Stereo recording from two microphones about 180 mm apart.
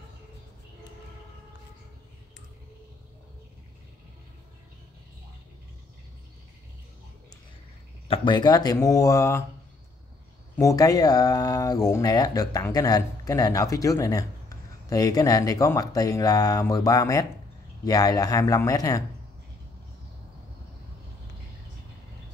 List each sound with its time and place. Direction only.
8.1 s speech: 25° left (ahead or behind)
10.5 s speech: 20° left (ahead or behind)